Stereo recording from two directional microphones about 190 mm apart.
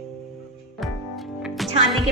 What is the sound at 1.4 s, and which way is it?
Music, centre (ahead or behind).